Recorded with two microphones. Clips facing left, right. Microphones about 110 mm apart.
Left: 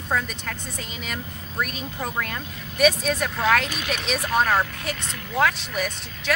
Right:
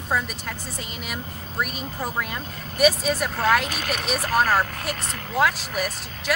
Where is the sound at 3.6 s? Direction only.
50° right (ahead or behind).